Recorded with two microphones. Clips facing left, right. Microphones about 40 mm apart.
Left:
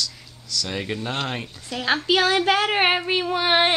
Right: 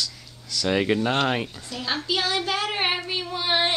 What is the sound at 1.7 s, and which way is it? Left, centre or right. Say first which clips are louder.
A child's voice: left 7 dB; left.